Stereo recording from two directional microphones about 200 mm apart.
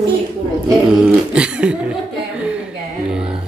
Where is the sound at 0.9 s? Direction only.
5° right (ahead or behind).